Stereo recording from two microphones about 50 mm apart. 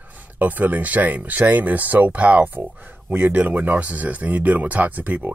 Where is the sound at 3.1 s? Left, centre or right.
Right.